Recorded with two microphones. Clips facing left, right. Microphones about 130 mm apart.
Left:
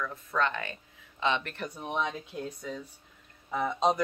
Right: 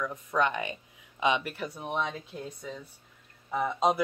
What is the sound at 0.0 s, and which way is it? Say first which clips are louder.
Speech: right 2 dB; 15° right (ahead or behind).